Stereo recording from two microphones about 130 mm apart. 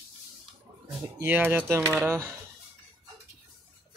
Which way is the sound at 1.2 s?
15° right (ahead or behind).